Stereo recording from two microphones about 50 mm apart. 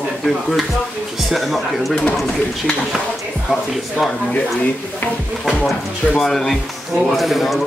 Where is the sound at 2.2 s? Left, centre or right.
Centre.